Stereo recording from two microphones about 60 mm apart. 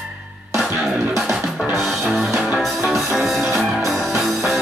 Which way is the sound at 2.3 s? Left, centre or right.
Centre.